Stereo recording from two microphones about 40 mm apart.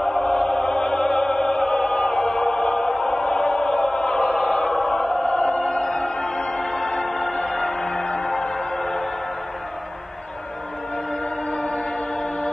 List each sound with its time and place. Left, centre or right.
0.0 s opera: centre
2.1 s music: centre
2.6 s choir: left
7.1 s music: centre
11.5 s music: left